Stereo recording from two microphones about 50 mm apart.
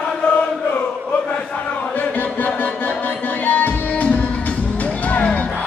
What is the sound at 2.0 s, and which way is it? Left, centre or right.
Chant, left.